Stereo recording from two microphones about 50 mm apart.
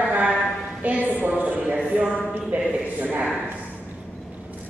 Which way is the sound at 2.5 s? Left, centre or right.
Right.